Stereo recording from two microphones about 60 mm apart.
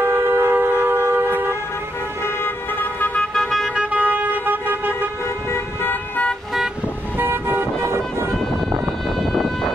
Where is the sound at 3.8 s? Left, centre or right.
Right.